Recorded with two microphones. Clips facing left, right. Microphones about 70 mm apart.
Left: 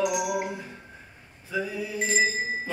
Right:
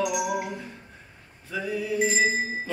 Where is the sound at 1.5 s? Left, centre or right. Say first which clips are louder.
Right 2 dB; centre.